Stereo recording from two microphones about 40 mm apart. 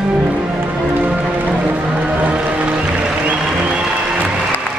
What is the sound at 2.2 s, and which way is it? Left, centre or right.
Music, right.